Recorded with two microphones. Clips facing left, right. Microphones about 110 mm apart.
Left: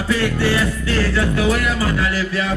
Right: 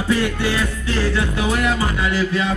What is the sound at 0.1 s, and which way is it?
Music, 20° right (ahead or behind).